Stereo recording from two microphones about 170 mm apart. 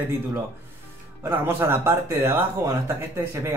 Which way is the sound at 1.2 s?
15° right (ahead or behind).